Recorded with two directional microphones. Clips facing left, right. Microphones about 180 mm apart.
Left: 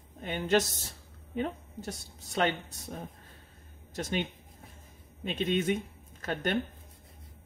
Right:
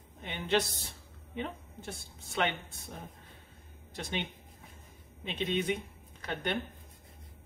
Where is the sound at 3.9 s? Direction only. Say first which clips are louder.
Left 5 dB; 45° left (ahead or behind).